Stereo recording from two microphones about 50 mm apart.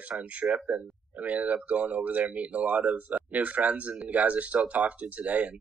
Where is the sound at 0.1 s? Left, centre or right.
Right.